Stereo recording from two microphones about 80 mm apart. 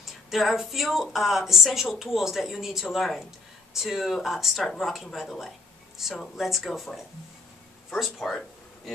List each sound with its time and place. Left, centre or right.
0.3 s speech: centre